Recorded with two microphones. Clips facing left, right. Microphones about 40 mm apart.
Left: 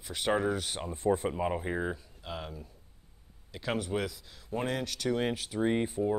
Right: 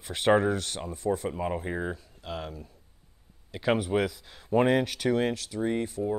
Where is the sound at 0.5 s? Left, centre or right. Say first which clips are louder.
Right 2 dB; centre.